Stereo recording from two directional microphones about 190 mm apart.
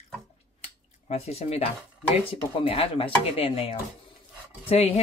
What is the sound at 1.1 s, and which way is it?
Speech, 30° left (ahead or behind).